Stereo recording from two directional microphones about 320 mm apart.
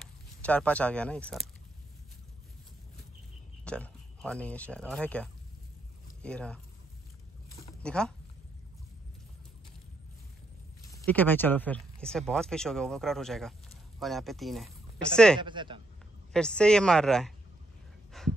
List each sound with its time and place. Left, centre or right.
0.0 s speech: centre
3.6 s speech: centre
7.8 s speech: centre
10.9 s speech: centre
15.4 s speech: centre
16.3 s speech: centre
18.1 s a sound: centre